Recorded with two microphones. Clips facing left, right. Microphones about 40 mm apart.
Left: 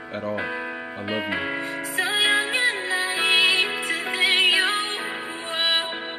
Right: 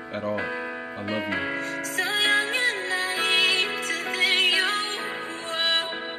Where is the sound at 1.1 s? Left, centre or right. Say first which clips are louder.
Left 1 dB; centre.